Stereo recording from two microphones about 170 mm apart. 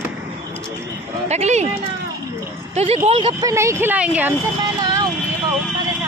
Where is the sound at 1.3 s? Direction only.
40° right (ahead or behind).